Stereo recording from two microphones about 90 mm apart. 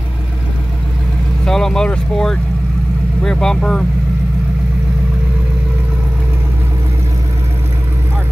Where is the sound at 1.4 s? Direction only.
5° left (ahead or behind).